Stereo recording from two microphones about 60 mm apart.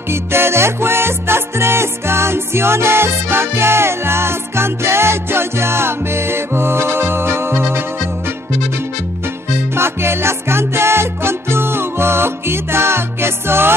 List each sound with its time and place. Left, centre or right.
0.1 s music: right
9.8 s music: right